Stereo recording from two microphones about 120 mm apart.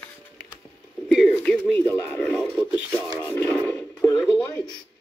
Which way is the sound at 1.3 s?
15° left (ahead or behind).